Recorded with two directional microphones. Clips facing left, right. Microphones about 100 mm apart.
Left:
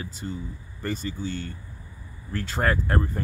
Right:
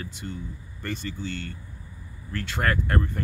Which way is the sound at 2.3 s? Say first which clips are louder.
Left 1 dB; 35° left (ahead or behind).